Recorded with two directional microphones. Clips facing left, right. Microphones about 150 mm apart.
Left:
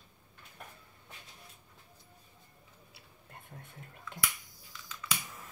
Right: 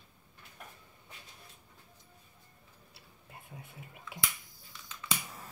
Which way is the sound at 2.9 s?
5° right (ahead or behind).